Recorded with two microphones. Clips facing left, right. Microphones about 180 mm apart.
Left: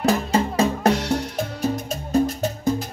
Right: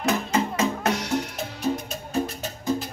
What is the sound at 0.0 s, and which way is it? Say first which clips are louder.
Music: left 4 dB; 35° left (ahead or behind).